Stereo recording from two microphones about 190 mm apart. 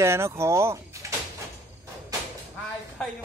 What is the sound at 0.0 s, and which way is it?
Speech, 15° right (ahead or behind).